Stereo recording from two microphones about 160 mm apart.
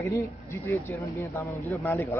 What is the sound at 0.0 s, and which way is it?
A man's voice, 20° left (ahead or behind).